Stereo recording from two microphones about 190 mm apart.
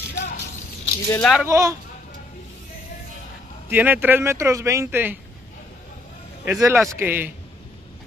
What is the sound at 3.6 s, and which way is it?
A man's voice, 10° right (ahead or behind).